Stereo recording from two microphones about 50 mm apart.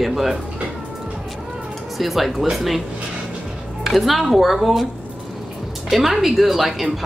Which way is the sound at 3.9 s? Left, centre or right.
Centre.